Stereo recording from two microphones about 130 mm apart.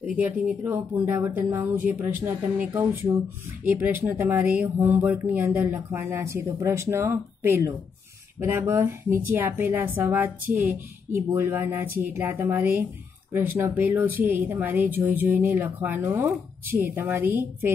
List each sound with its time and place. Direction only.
0.0 s speech: 10° right (ahead or behind)